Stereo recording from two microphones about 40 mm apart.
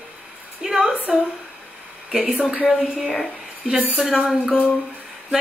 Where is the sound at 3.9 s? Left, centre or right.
Centre.